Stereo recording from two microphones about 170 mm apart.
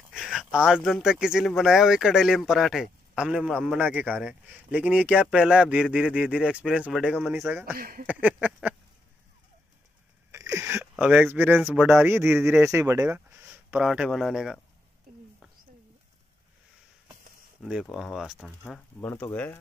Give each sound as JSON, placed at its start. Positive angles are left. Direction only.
{"t": 0.1, "sound": "speech", "side_deg": 0}
{"t": 7.4, "sound": "speech", "side_deg": -15}
{"t": 7.7, "sound": "speech", "side_deg": -60}
{"t": 8.1, "sound": "speech", "side_deg": -10}
{"t": 10.3, "sound": "a sound", "side_deg": -20}
{"t": 11.7, "sound": "speech", "side_deg": -10}
{"t": 17.6, "sound": "speech", "side_deg": -5}